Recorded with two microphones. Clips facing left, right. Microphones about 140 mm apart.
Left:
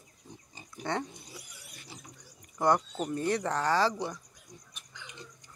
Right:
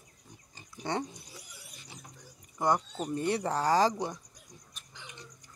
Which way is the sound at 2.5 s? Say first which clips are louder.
Left 2 dB; 10° right (ahead or behind).